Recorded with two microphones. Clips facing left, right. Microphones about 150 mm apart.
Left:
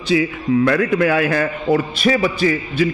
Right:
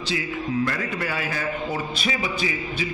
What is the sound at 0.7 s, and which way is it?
A man's voice, 60° left (ahead or behind).